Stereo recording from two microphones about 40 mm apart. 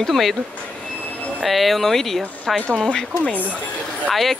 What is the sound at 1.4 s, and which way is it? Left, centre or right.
Speech, centre.